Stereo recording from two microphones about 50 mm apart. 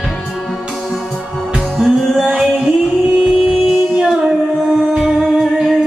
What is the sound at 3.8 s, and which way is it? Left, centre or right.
Music, centre.